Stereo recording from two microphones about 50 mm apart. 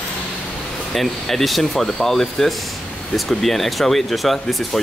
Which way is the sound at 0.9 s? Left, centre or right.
Centre.